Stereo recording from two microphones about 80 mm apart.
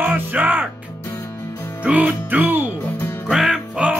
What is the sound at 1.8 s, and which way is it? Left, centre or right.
Music, centre.